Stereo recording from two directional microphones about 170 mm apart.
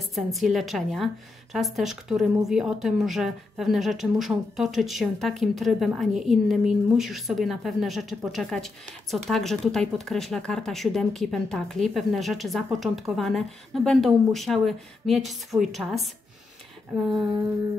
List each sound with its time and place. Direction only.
0.1 s a woman's voice: centre (ahead or behind)